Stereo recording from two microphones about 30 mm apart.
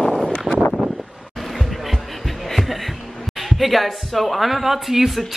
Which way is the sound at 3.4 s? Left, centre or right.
Centre.